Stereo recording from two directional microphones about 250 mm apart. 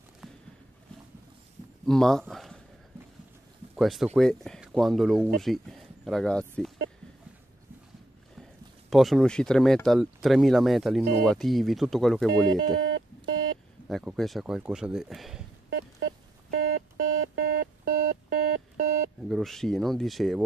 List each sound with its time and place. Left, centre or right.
0.2 s a sound: centre
1.9 s speech: centre
3.7 s speech: centre
8.9 s speech: centre
12.8 s music: right
13.8 s speech: centre
15.7 s telephone dialing: right
19.2 s speech: centre